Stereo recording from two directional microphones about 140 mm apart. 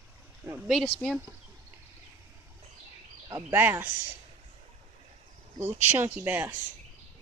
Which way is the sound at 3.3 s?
15° right (ahead or behind).